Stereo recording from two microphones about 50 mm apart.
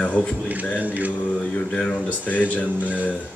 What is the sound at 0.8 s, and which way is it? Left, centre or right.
Speech, right.